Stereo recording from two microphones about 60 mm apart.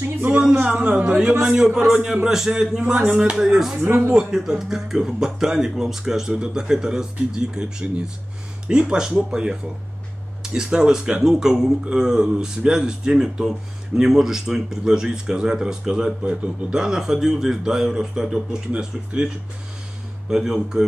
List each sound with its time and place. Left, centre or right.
0.3 s speech: centre
0.6 s a man's voice: right; by 3.7 s centre
3.8 s speech: right
4.1 s speech: centre